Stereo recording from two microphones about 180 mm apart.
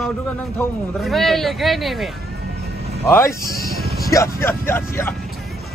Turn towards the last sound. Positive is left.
turn(degrees=15)  # may be behind; listen again after turning